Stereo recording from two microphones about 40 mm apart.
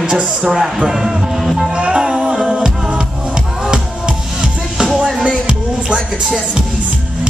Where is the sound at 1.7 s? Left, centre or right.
Right.